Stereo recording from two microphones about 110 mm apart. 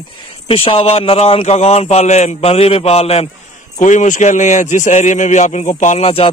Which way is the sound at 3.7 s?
90° left.